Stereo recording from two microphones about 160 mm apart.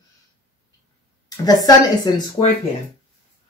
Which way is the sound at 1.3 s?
25° left (ahead or behind).